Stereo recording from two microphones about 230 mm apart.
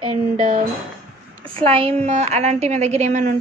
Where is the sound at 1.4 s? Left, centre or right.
Right.